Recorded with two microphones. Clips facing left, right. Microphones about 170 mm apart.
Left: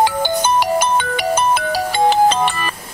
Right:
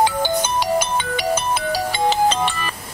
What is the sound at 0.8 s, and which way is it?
Music, 55° left (ahead or behind).